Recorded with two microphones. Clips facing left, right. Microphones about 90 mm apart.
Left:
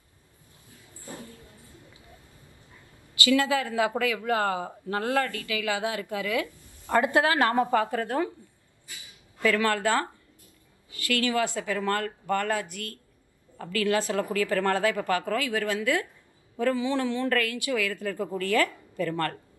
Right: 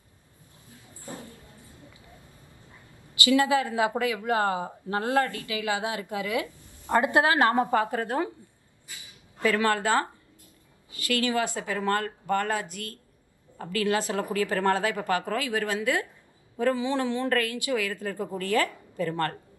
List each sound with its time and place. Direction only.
1.0 s dog: 20° right (ahead or behind)
3.3 s speech: 20° right (ahead or behind)
9.4 s speech: 25° right (ahead or behind)
11.1 s speech: 20° right (ahead or behind)